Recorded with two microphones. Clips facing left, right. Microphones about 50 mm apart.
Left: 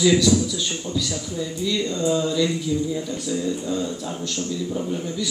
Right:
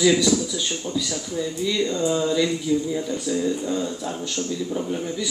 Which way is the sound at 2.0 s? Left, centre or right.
Centre.